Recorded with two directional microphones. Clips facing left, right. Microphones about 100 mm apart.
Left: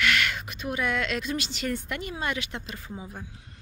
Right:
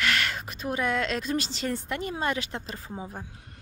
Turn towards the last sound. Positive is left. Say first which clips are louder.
# right 1 dB
turn(degrees=-35)  # may be behind; listen again after turning